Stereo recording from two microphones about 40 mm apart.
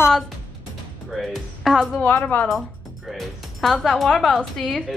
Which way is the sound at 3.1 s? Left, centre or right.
Centre.